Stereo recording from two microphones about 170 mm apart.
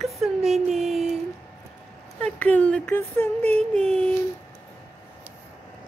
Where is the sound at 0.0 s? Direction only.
Centre (ahead or behind).